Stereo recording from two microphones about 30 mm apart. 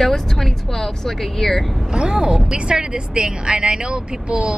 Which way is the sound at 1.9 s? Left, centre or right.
Right.